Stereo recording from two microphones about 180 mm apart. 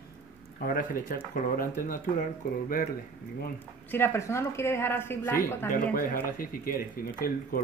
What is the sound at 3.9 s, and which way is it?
A woman's voice, 15° left (ahead or behind).